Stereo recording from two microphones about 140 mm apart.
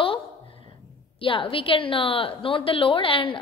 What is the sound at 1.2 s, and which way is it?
A woman's voice, 40° left (ahead or behind).